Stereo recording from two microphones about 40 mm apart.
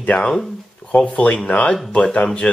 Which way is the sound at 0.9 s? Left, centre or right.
Left.